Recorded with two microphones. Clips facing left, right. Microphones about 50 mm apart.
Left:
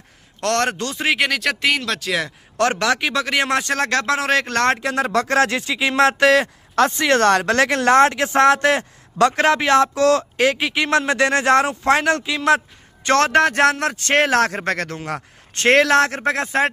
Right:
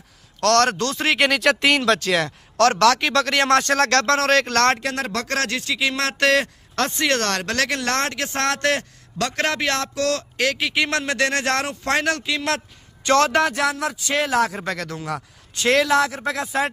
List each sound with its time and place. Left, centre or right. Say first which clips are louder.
0.4 s a man's voice: right 3 dB; left
0.9 s speech: left 1 dB; centre
2.5 s speech: right 3 dB; centre
10.7 s speech: left 4 dB; centre
13.0 s a man's voice: left 2 dB; left
15.8 s a man's voice: left 3 dB; left